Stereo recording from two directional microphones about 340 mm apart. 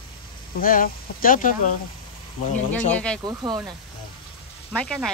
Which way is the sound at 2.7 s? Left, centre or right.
Centre.